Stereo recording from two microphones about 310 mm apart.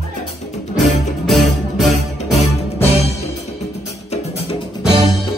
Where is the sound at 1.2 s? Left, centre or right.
Centre.